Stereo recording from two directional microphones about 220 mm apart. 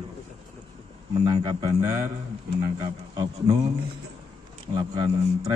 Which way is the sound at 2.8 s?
20° right (ahead or behind).